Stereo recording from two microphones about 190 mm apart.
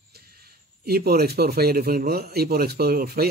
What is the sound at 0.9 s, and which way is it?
Speech, 55° right (ahead or behind).